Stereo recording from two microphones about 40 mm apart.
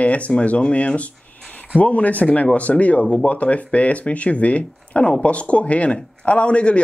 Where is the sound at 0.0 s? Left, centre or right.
Left.